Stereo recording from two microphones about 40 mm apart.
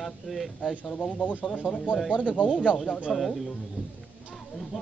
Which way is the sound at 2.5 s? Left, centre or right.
Centre.